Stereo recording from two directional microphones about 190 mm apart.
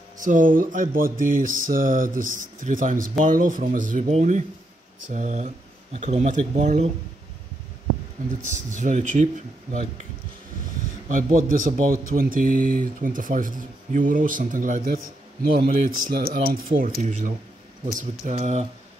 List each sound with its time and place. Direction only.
0.2 s speech: 45° right (ahead or behind)
8.5 s speech: 40° right (ahead or behind)
11.1 s speech: 45° right (ahead or behind)